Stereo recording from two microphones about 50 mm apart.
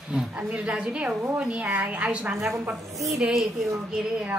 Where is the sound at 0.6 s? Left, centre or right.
Right.